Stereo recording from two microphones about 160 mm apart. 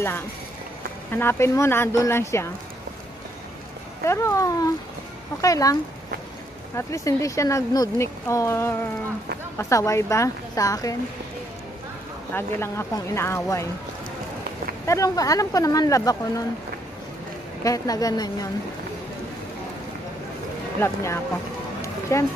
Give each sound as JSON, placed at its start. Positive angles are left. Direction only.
{"t": 1.1, "sound": "speech", "side_deg": 15}
{"t": 4.0, "sound": "speech", "side_deg": 20}
{"t": 6.8, "sound": "speech", "side_deg": 20}
{"t": 12.4, "sound": "speech", "side_deg": 15}
{"t": 14.9, "sound": "speech", "side_deg": 20}
{"t": 17.6, "sound": "speech", "side_deg": 20}
{"t": 20.8, "sound": "speech", "side_deg": 15}